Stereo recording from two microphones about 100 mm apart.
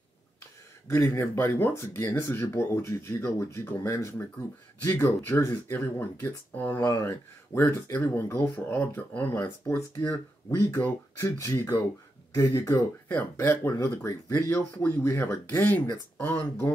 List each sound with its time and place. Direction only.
0.8 s speech: 25° left (ahead or behind)